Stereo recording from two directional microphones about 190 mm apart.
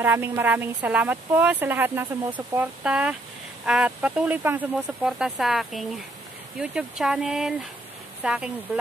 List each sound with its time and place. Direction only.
0.0 s speech: 10° right (ahead or behind)